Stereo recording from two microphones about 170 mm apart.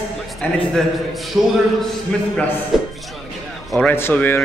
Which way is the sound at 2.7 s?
Centre (ahead or behind).